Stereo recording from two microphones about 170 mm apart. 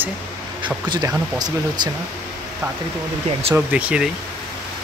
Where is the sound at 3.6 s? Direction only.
10° right (ahead or behind).